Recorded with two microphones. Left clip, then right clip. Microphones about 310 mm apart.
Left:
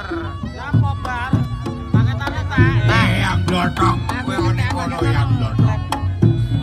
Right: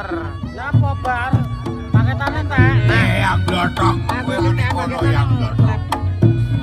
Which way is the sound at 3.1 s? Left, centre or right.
Centre.